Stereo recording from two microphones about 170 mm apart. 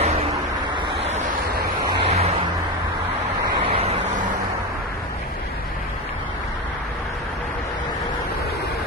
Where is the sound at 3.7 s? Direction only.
35° right (ahead or behind).